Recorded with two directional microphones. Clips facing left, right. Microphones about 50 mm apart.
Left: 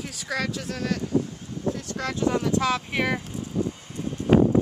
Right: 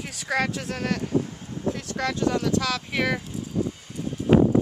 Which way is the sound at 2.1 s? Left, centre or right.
Centre.